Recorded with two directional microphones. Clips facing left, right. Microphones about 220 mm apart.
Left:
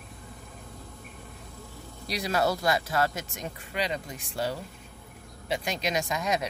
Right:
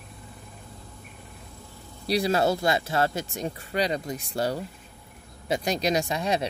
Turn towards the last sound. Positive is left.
turn(degrees=-30)  # may be behind; listen again after turning